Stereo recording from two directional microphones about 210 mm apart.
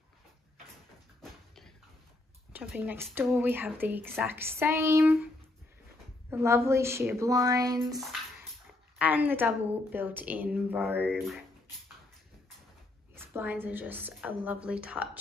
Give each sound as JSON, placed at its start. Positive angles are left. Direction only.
{"t": 2.5, "sound": "a woman's voice", "side_deg": -5}
{"t": 6.3, "sound": "a woman's voice", "side_deg": -10}
{"t": 13.1, "sound": "a woman's voice", "side_deg": -10}